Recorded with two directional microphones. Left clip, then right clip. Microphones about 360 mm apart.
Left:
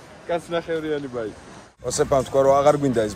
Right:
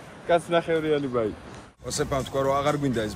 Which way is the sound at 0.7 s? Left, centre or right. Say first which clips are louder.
Right 1 dB; right.